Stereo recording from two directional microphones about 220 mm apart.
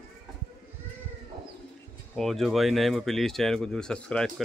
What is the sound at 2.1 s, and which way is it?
Speech, centre (ahead or behind).